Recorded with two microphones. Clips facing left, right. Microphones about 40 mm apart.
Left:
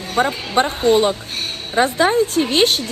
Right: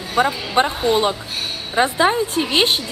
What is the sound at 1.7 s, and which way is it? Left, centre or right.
Speech, centre.